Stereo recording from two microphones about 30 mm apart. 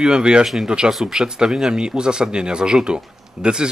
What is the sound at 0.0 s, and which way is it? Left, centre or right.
Speech, right.